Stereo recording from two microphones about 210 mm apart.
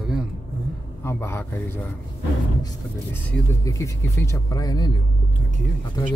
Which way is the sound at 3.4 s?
15° left (ahead or behind).